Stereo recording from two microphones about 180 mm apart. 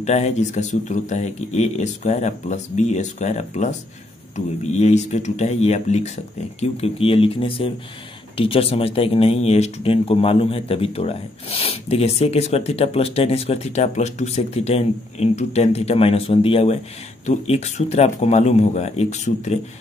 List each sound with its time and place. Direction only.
0.0 s speech: 40° left (ahead or behind)
4.7 s speech: 40° left (ahead or behind)